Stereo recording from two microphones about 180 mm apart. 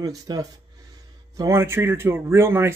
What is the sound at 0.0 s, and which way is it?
Speech, 20° right (ahead or behind).